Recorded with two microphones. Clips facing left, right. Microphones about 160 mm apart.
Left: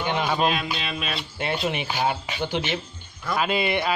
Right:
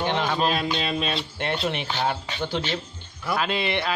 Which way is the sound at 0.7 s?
35° right (ahead or behind).